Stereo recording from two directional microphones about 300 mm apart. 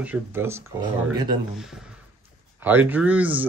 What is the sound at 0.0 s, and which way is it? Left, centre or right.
Speech, centre.